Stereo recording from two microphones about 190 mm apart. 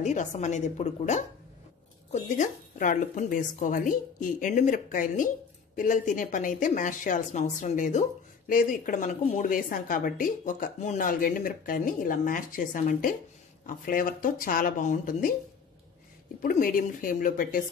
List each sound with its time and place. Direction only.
0.0 s a woman's voice: 40° left (ahead or behind)
16.4 s a woman's voice: 45° left (ahead or behind)